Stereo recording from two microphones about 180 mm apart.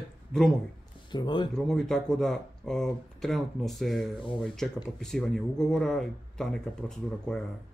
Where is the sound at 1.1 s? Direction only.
25° left (ahead or behind).